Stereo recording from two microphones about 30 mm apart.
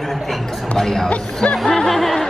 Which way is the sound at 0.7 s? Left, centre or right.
Centre.